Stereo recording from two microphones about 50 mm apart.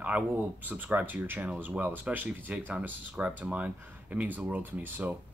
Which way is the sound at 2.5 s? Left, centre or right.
Right.